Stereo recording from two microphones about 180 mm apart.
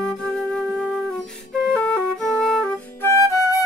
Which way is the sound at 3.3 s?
20° left (ahead or behind).